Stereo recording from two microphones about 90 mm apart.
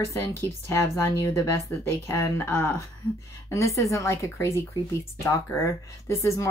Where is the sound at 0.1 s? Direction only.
30° left (ahead or behind).